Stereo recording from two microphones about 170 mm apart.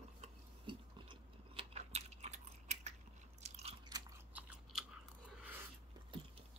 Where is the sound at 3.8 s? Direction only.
20° right (ahead or behind).